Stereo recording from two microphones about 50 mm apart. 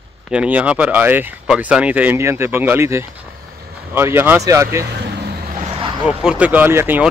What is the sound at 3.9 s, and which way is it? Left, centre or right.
Speech, right.